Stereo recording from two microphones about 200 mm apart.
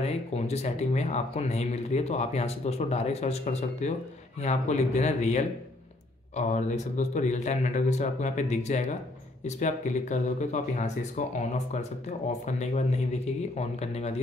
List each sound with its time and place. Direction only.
0.0 s speech: 35° left (ahead or behind)